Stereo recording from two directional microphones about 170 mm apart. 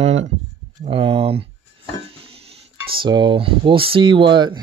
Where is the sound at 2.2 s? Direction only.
35° right (ahead or behind).